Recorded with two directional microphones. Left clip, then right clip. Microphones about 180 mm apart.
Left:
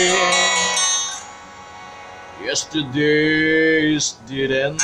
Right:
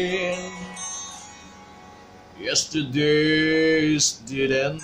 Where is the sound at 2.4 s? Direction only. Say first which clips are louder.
Left 2 dB; 5° right (ahead or behind).